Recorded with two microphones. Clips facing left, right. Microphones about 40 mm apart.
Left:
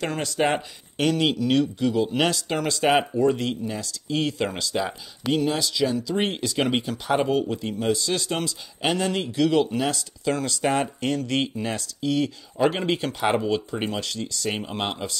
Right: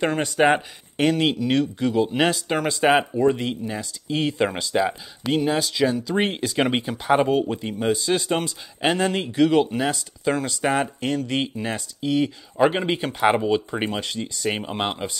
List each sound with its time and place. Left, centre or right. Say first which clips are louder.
0.0 s speech: right 5 dB; right
2.0 s speech: right 4 dB; centre